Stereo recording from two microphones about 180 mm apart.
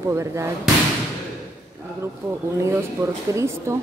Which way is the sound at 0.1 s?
15° right (ahead or behind).